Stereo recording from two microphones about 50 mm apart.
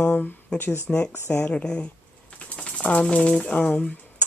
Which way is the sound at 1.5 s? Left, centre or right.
Left.